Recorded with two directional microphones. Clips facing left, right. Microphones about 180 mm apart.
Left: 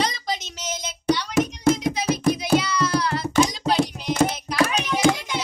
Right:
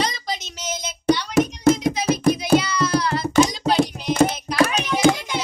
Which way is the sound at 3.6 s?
60° right (ahead or behind).